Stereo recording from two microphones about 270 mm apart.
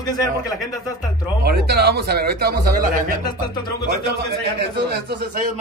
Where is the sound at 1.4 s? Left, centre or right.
Right.